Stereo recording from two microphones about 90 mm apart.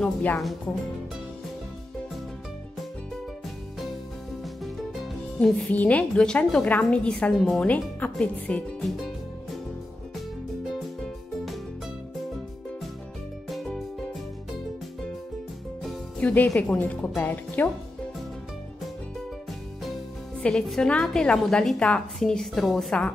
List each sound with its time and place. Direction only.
0.0 s speech: 20° left (ahead or behind)
4.9 s music: centre (ahead or behind)
5.7 s a woman's voice: 15° left (ahead or behind)
7.3 s speech: centre (ahead or behind)
7.6 s a woman's voice: 15° left (ahead or behind)
8.8 s music: centre (ahead or behind)
13.5 s music: centre (ahead or behind)
16.2 s a woman's voice: 15° left (ahead or behind)
20.3 s a woman's voice: 5° left (ahead or behind)